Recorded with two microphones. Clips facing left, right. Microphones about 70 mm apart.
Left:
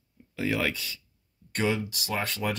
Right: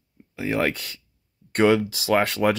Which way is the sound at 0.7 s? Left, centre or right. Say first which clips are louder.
Right 4 dB; right.